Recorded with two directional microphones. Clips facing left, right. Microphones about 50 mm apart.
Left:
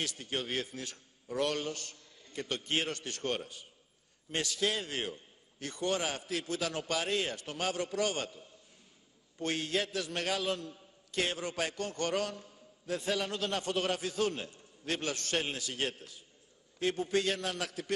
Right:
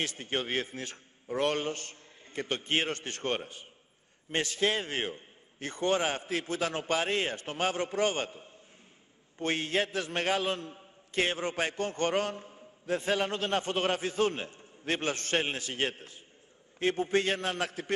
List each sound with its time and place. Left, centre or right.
0.0 s a man's voice: right